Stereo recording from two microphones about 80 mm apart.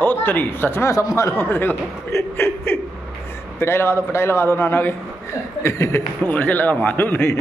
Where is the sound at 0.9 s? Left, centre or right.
Left.